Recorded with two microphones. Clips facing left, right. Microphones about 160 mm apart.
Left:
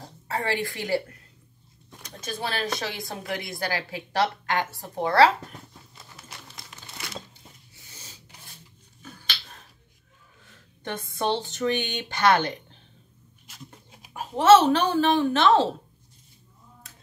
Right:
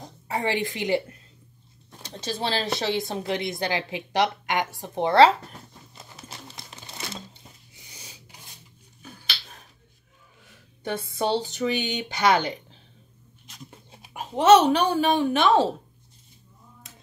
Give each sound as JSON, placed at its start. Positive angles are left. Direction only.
{"t": 0.0, "sound": "a woman's voice", "side_deg": -20}
{"t": 6.1, "sound": "crumpling", "side_deg": -30}
{"t": 7.7, "sound": "a sound", "side_deg": -15}
{"t": 10.8, "sound": "speech", "side_deg": -10}
{"t": 13.5, "sound": "a sound", "side_deg": 5}
{"t": 13.9, "sound": "speech", "side_deg": -20}